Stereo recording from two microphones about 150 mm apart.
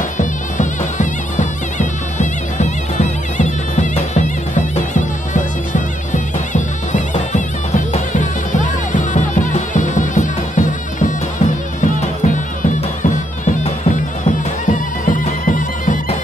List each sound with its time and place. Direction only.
0.2 s music: 55° left (ahead or behind)